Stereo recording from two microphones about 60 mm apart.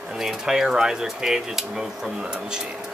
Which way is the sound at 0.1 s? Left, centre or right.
Centre.